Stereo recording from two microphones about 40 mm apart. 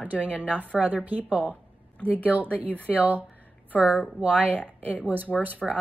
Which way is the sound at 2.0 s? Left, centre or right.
Left.